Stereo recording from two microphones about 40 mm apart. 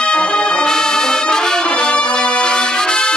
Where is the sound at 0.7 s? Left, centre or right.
Centre.